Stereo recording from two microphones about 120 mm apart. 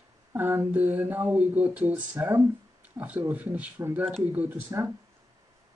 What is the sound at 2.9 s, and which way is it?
Speech, 15° right (ahead or behind).